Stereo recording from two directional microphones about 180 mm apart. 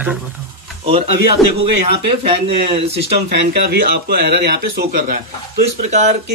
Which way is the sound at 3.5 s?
60° right (ahead or behind).